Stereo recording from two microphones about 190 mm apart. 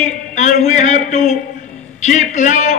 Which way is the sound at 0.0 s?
40° left (ahead or behind).